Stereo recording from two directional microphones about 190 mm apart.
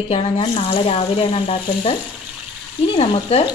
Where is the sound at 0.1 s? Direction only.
30° left (ahead or behind).